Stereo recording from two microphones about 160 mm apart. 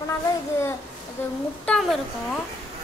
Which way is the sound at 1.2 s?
10° left (ahead or behind).